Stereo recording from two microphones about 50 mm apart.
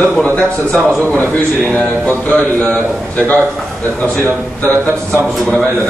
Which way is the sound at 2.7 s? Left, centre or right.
Left.